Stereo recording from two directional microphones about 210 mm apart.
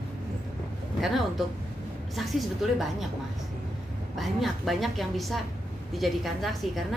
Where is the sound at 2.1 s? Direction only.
Centre (ahead or behind).